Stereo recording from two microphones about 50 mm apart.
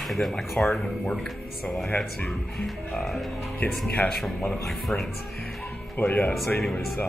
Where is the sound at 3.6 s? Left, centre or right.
Left.